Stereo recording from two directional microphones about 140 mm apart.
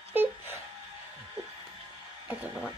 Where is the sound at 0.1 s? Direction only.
15° right (ahead or behind).